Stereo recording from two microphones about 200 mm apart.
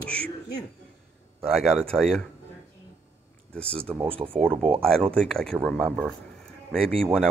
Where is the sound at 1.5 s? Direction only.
Centre (ahead or behind).